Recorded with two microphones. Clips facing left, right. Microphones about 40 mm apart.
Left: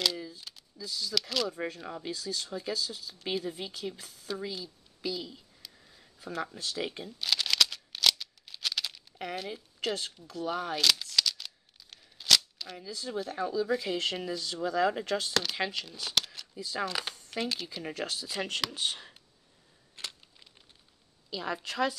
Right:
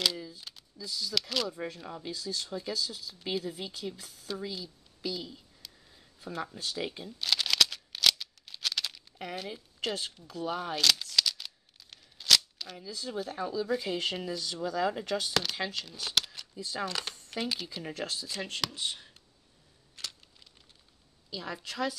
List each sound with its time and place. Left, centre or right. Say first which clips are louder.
0.0 s speech: even; centre
1.7 s speech: left 2 dB; centre
2.1 s speech: even; centre
2.6 s speech: left 1 dB; centre
5.8 s a sound: left 1 dB; centre
6.8 s shuffling cards: left 1 dB; centre
12.5 s speech: left 1 dB; centre
15.5 s speech: left 2 dB; centre
15.8 s speech: even; centre
17.8 s speech: left 2 dB; centre
18.8 s speech: left 3 dB; left
20.0 s a sound: left 1 dB; left
21.3 s speech: left 4 dB; centre